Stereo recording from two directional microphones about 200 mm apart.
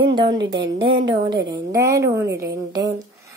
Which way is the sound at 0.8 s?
25° right (ahead or behind).